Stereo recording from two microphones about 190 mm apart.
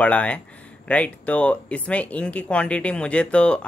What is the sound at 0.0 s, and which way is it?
Speech, 5° left (ahead or behind).